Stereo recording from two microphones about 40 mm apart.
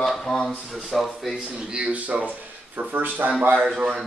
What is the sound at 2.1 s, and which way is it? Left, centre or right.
Speech, right.